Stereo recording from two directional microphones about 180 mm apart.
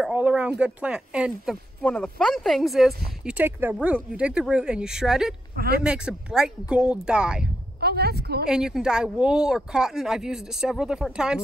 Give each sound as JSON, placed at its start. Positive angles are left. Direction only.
{"t": 0.0, "sound": "speech", "side_deg": -5}
{"t": 7.8, "sound": "a woman's voice", "side_deg": -60}
{"t": 8.5, "sound": "speech", "side_deg": -5}